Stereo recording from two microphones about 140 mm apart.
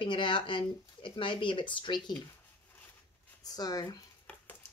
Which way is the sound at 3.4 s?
30° left (ahead or behind).